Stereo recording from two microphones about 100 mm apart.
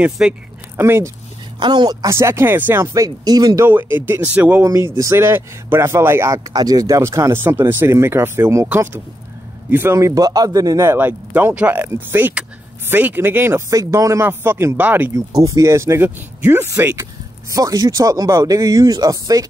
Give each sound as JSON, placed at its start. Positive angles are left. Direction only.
{"t": 0.2, "sound": "speech", "side_deg": -10}
{"t": 0.7, "sound": "speech", "side_deg": -25}
{"t": 1.6, "sound": "a woman's voice", "side_deg": -50}
{"t": 2.0, "sound": "speech", "side_deg": -25}
{"t": 2.9, "sound": "speech", "side_deg": -40}
{"t": 3.6, "sound": "speech", "side_deg": -20}
{"t": 4.6, "sound": "speech", "side_deg": -30}
{"t": 9.9, "sound": "speech", "side_deg": -35}
{"t": 15.4, "sound": "speech", "side_deg": -30}
{"t": 17.0, "sound": "speech", "side_deg": -35}